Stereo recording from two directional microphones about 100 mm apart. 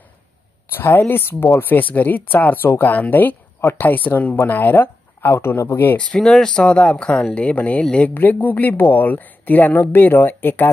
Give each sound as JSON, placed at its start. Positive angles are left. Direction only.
{"t": 0.7, "sound": "speech", "side_deg": 20}
{"t": 6.1, "sound": "speech", "side_deg": 5}